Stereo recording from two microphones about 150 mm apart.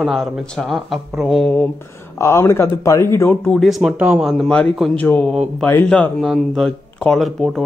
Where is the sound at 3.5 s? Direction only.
Centre (ahead or behind).